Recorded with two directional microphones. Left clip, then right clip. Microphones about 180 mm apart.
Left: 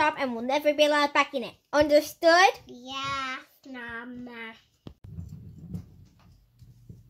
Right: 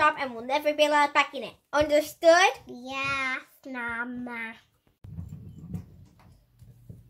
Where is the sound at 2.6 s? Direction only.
40° right (ahead or behind).